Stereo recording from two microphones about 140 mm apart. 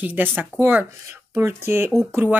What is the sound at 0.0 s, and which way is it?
Speech, 10° right (ahead or behind).